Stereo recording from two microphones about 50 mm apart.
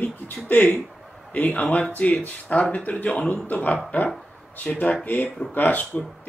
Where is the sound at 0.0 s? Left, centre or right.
Left.